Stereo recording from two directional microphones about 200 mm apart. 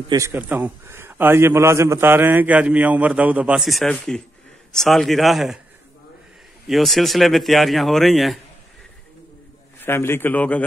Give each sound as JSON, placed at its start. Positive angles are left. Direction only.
{"t": 0.1, "sound": "a man's voice", "side_deg": -10}
{"t": 6.7, "sound": "speech", "side_deg": 0}
{"t": 9.8, "sound": "a man's voice", "side_deg": 10}